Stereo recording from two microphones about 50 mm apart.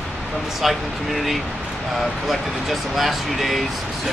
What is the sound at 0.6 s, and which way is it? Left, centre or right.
Speech, centre.